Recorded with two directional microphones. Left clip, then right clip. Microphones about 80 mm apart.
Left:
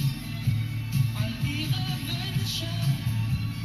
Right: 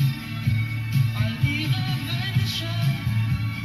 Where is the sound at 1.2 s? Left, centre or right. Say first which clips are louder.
Right 6 dB; centre.